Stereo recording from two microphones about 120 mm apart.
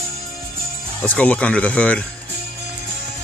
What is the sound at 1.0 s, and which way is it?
Speech, 10° left (ahead or behind).